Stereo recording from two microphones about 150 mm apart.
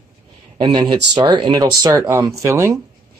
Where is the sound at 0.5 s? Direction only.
25° right (ahead or behind).